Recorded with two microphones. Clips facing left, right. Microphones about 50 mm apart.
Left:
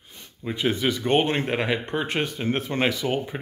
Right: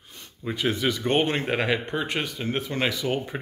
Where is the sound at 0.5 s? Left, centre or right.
Centre.